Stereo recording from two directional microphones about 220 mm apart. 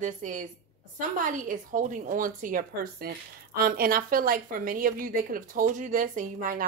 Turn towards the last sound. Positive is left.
turn(degrees=-35)  # may be behind; listen again after turning